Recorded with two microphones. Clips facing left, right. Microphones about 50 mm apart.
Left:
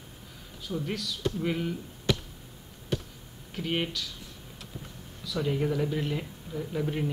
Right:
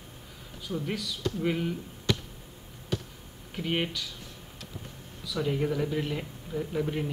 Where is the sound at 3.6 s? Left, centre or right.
Centre.